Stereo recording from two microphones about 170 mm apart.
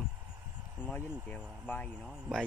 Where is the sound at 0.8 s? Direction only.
10° left (ahead or behind).